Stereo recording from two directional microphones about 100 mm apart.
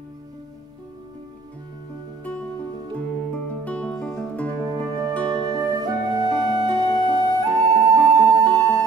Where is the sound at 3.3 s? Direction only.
15° left (ahead or behind).